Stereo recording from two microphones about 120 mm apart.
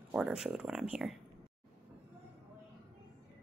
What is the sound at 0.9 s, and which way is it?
Speech, 5° right (ahead or behind).